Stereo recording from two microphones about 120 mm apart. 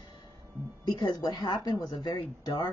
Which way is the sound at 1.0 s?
35° left (ahead or behind).